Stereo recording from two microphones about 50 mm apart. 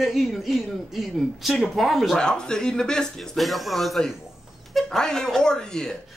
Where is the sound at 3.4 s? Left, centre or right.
Centre.